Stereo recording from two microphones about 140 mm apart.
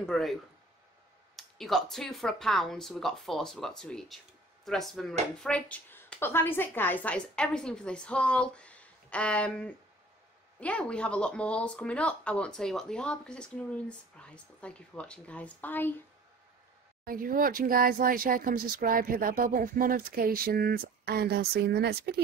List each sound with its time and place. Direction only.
0.0 s speech: centre (ahead or behind)
17.0 s speech: 90° right